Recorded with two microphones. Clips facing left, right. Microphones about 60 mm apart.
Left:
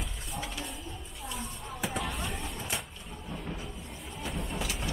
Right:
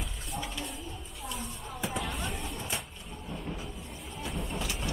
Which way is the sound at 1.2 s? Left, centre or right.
Centre.